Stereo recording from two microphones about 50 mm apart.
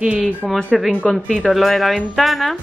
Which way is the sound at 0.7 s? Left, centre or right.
Centre.